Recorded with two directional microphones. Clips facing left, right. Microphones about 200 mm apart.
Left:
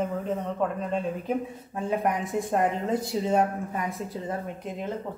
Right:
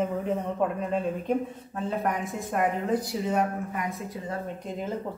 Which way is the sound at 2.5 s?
25° left (ahead or behind).